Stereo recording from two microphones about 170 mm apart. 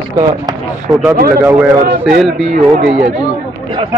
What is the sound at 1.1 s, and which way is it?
A man's voice, 65° right (ahead or behind).